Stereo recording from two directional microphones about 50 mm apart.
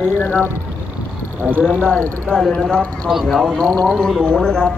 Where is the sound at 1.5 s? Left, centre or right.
Left.